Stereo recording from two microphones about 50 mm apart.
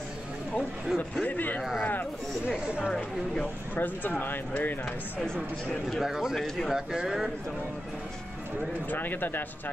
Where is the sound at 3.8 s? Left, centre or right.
Left.